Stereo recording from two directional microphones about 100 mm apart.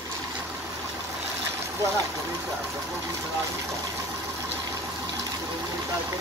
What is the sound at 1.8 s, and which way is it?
Speech, 30° right (ahead or behind).